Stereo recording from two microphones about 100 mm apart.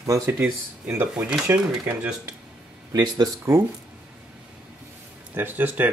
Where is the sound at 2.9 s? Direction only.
40° right (ahead or behind).